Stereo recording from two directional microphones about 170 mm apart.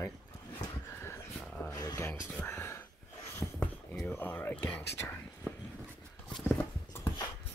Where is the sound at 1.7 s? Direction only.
20° left (ahead or behind).